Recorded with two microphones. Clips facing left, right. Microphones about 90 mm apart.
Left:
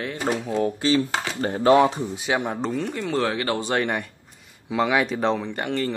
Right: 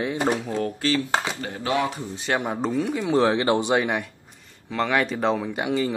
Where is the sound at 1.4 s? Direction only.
40° left (ahead or behind).